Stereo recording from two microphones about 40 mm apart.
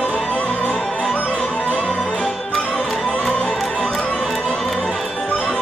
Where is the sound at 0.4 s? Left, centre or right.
Left.